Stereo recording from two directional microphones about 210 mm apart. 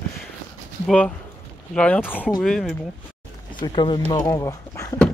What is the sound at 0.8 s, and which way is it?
Speech, 5° left (ahead or behind).